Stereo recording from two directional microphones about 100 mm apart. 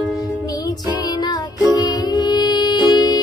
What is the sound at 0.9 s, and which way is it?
Music, 45° left (ahead or behind).